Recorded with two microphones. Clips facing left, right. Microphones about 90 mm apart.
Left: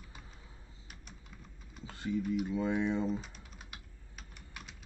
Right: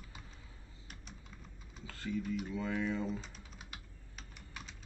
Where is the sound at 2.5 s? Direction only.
20° left (ahead or behind).